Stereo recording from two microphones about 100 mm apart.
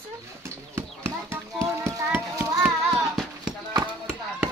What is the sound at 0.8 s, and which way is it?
Horse, 25° right (ahead or behind).